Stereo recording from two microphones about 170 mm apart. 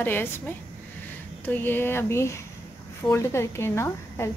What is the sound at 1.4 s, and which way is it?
A woman's voice, 10° left (ahead or behind).